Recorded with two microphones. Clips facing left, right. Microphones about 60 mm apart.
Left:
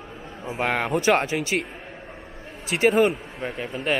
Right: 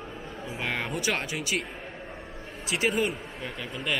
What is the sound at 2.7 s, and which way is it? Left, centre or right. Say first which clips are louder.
Speech: left 8 dB; left.